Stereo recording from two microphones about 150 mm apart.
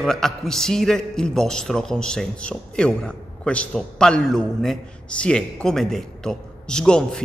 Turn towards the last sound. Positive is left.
turn(degrees=5)  # may be behind; listen again after turning